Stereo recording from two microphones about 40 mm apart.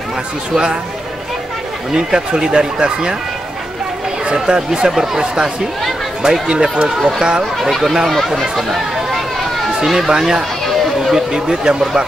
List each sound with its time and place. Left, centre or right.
2.0 s speech: centre
4.3 s speech: centre
7.0 s speech: centre
8.4 s a sound: centre
9.7 s speech: centre
11.0 s a sound: centre
11.3 s speech: centre